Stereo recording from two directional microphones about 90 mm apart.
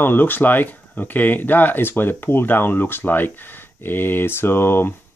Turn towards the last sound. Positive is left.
turn(degrees=25)  # may be behind; listen again after turning